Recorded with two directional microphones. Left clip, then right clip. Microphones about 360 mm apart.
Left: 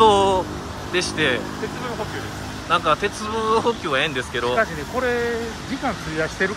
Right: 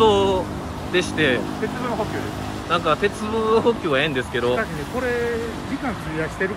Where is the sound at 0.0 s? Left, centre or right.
Centre.